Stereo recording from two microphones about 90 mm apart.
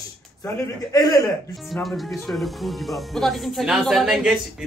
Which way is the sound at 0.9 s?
45° left (ahead or behind).